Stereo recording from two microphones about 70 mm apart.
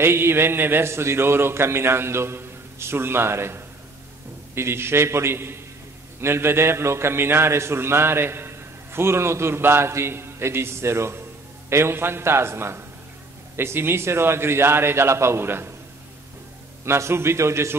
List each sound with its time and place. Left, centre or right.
0.0 s a man's voice: right
16.8 s a man's voice: right